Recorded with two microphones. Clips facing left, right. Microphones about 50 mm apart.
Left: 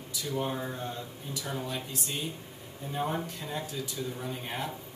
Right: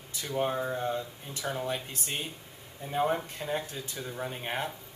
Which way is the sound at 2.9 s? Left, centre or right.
Right.